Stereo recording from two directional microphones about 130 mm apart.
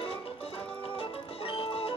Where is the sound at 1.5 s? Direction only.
45° left (ahead or behind).